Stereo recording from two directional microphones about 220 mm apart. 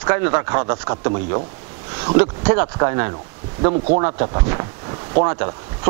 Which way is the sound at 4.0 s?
20° right (ahead or behind).